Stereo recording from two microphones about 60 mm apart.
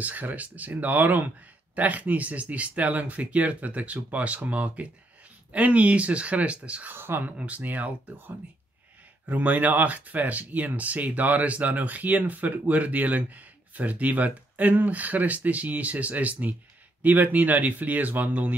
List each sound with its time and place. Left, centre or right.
0.0 s speech: right
6.9 s speech: right
7.2 s speech: right
9.2 s speech: right